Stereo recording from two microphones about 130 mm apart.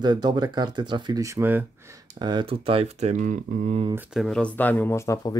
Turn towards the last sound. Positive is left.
turn(degrees=25)  # may be behind; listen again after turning